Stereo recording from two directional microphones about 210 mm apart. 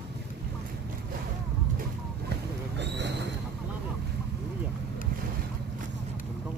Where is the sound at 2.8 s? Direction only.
55° right (ahead or behind).